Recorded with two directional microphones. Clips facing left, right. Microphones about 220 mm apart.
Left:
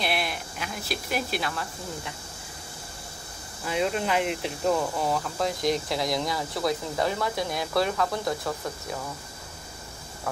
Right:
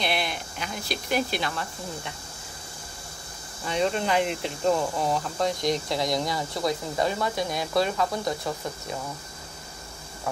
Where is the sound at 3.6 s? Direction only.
5° left (ahead or behind).